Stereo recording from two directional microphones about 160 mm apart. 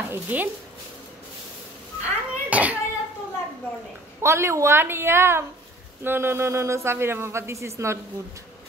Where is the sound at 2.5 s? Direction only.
10° right (ahead or behind).